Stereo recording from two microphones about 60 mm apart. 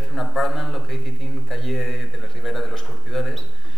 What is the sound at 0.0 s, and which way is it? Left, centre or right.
Speech, centre.